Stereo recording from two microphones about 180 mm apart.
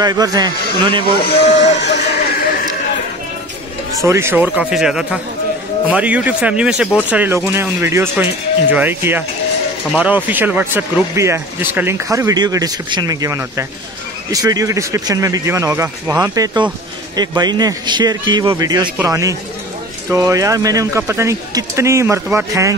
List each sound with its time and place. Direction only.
0.0 s speech: 20° right (ahead or behind)
1.4 s speech: 75° left (ahead or behind)
1.8 s music: 70° left (ahead or behind)
4.0 s speech: 15° right (ahead or behind)